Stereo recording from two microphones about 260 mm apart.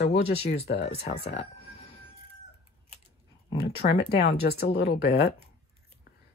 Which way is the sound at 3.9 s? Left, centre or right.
Left.